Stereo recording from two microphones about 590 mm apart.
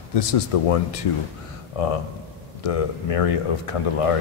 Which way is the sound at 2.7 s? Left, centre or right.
Left.